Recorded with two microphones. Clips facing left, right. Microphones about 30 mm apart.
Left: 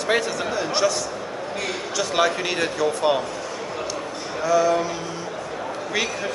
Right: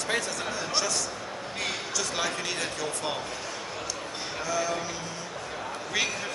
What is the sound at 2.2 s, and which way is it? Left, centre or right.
A man's voice, left.